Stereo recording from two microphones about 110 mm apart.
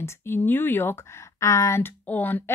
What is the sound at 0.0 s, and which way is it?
Speech, 25° left (ahead or behind).